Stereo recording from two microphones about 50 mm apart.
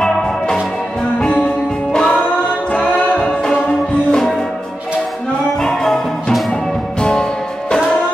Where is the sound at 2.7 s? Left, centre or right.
Left.